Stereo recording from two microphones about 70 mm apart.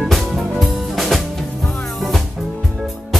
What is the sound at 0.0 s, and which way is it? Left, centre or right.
Music, centre.